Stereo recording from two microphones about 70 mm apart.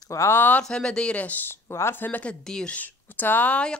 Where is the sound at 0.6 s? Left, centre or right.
Centre; by 2.0 s left.